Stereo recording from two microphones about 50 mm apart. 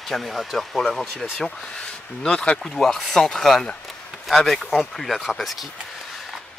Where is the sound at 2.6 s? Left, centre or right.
Centre.